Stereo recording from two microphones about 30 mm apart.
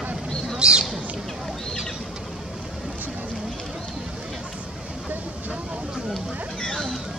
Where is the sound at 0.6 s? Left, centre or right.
Right.